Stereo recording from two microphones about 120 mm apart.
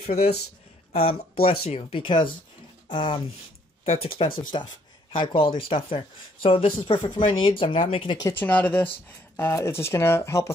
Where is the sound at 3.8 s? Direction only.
55° left (ahead or behind).